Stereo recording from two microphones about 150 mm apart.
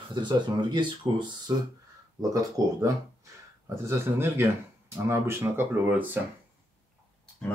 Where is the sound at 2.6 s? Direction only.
25° right (ahead or behind).